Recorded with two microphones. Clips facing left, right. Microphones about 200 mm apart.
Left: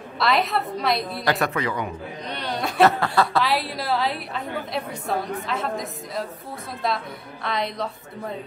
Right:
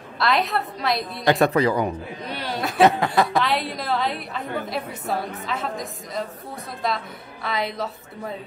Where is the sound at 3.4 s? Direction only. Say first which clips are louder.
Even; centre (ahead or behind).